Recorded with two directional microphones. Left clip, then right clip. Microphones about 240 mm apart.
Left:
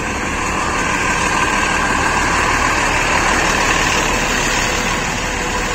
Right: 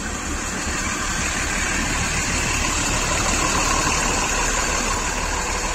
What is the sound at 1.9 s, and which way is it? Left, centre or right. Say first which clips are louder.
Vehicle: left 8 dB; right.